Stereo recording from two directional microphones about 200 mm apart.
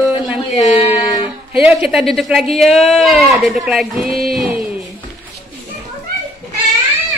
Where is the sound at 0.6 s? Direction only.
30° left (ahead or behind).